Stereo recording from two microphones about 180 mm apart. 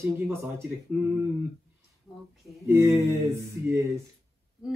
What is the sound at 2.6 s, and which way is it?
Speech, 15° right (ahead or behind).